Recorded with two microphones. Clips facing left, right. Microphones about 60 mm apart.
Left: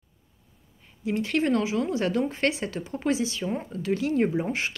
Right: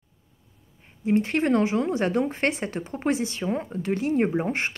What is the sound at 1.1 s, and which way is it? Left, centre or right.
Speech, right.